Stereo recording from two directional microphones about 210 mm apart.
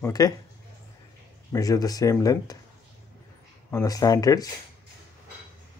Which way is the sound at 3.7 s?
15° left (ahead or behind).